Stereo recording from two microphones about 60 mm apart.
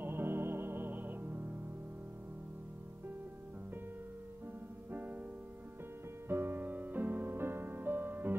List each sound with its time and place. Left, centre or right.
0.0 s music: right
4.9 s music: right
6.2 s music: right